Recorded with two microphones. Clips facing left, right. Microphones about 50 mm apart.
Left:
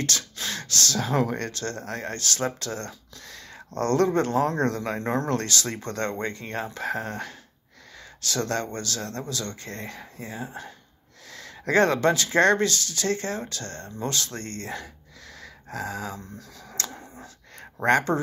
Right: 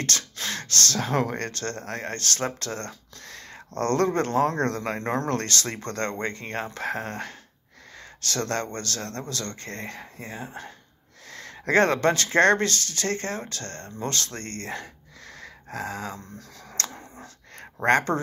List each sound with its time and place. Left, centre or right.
0.0 s speech: right
15.4 s a sound: right
17.8 s speech: right